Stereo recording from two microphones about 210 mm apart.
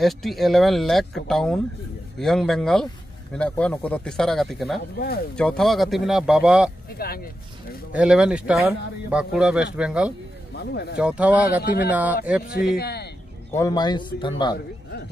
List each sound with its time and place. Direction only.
0.0 s speech: centre (ahead or behind)
4.9 s speech: 45° left (ahead or behind)
5.3 s speech: 5° left (ahead or behind)
6.9 s speech: 45° left (ahead or behind)
7.9 s speech: 5° right (ahead or behind)
10.5 s speech: 50° left (ahead or behind)
11.0 s speech: 5° right (ahead or behind)
11.6 s speech: 50° left (ahead or behind)
11.9 s speech: 5° right (ahead or behind)
12.7 s speech: 50° left (ahead or behind)
13.5 s a man's voice: 15° left (ahead or behind)